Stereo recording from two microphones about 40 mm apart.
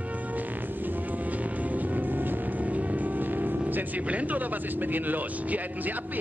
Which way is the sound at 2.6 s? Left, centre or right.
Right.